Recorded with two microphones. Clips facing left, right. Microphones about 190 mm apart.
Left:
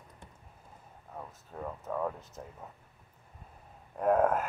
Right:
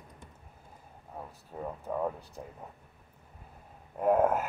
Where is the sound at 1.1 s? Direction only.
10° right (ahead or behind).